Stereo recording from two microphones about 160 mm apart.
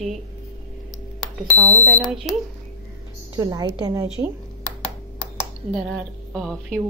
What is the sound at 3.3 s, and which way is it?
Speech, 25° right (ahead or behind).